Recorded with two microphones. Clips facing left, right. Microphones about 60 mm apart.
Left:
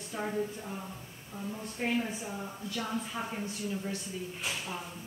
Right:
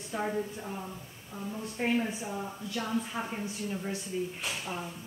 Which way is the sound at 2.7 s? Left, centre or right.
Right.